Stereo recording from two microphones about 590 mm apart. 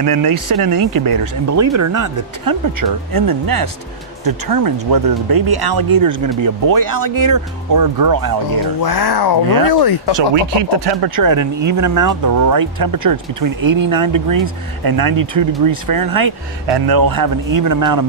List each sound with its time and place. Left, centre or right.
0.0 s speech: right
8.8 s speech: left
10.8 s speech: right